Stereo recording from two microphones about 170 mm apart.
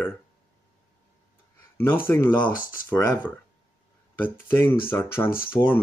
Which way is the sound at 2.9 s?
15° left (ahead or behind).